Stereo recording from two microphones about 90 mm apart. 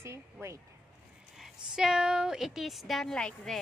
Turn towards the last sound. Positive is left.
turn(degrees=5)  # may be behind; listen again after turning